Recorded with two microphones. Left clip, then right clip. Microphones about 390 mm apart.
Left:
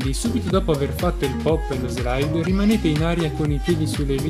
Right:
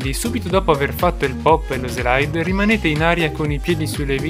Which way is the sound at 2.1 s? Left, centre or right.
Centre.